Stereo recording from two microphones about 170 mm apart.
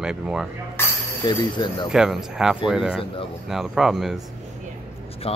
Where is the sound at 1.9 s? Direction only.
5° right (ahead or behind).